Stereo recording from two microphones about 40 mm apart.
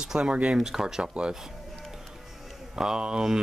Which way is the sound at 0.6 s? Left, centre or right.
Centre.